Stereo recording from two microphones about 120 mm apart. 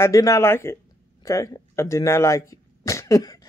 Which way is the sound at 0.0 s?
25° left (ahead or behind).